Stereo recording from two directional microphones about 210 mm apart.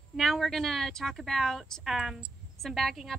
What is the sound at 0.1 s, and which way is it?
Speech, centre (ahead or behind).